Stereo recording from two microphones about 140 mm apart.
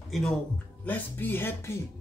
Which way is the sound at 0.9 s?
15° left (ahead or behind).